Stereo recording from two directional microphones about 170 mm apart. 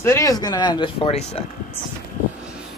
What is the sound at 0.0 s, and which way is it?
Speech, 20° left (ahead or behind).